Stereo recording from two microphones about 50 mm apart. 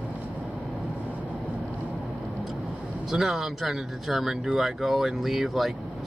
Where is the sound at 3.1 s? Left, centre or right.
Centre.